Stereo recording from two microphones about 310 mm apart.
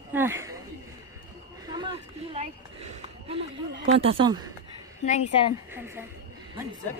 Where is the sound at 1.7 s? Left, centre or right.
Centre.